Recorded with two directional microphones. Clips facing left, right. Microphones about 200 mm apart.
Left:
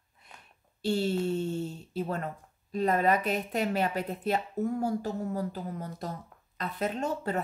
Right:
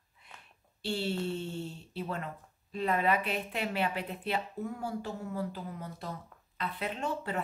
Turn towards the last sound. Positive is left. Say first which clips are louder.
# left 4 dB
turn(degrees=40)  # may be behind; listen again after turning